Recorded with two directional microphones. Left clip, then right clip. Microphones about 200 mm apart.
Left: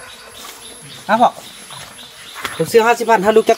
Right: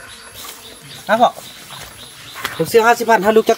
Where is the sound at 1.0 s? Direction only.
30° right (ahead or behind).